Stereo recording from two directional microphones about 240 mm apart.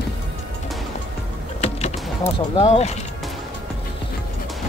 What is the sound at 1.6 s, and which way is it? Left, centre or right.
Vehicle, left.